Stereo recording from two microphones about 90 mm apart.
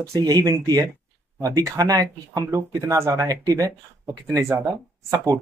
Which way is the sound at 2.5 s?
35° right (ahead or behind).